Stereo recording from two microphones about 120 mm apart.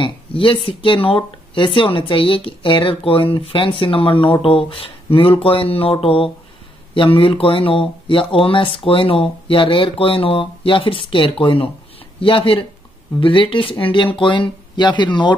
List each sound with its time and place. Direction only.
0.0 s speech: 45° left (ahead or behind)